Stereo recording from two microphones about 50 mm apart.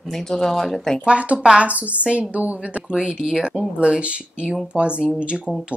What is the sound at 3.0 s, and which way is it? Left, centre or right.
A woman's voice, centre.